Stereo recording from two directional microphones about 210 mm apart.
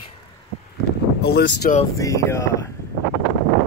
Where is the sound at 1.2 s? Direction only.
50° left (ahead or behind).